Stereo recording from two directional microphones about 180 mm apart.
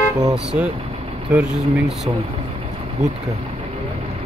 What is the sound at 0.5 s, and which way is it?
Speech, 10° right (ahead or behind).